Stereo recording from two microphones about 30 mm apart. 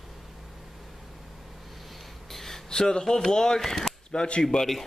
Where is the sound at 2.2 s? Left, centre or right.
Centre.